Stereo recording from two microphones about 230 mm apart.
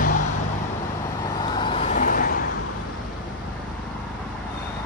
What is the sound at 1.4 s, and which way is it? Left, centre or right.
Vehicle, centre.